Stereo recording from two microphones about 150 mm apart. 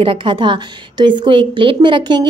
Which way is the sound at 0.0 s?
35° right (ahead or behind).